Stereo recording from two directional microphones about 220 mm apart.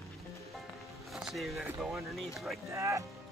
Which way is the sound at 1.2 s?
Centre (ahead or behind).